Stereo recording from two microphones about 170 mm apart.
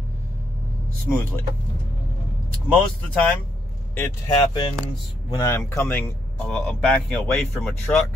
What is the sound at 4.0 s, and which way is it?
Speech, 20° left (ahead or behind).